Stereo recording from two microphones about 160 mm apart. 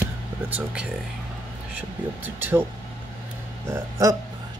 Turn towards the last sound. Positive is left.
turn(degrees=-20)  # may be behind; listen again after turning